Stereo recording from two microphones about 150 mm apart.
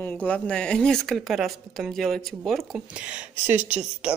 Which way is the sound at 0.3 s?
5° left (ahead or behind).